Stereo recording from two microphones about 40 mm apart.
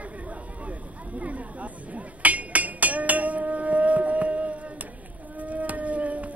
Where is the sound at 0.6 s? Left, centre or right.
Right.